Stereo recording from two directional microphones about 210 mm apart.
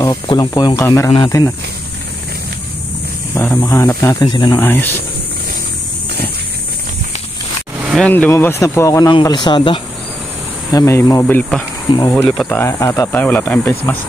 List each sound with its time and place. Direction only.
0.0 s speech: 20° left (ahead or behind)
3.3 s speech: 10° left (ahead or behind)
7.9 s speech: 5° left (ahead or behind)